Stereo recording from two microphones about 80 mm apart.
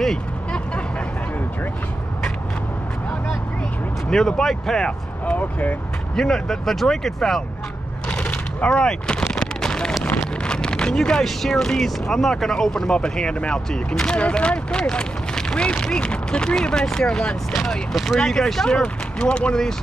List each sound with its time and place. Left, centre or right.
0.0 s vehicle: centre
4.1 s speech: centre
5.2 s speech: centre
6.1 s speech: centre
8.1 s a sound: centre
10.2 s speech: centre